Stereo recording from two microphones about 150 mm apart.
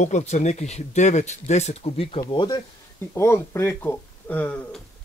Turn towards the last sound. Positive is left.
turn(degrees=10)  # may be behind; listen again after turning